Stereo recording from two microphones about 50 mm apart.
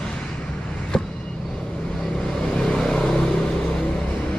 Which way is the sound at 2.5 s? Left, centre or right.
Centre.